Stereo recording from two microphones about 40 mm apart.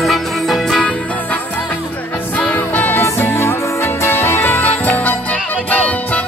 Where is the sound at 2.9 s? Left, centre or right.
Left.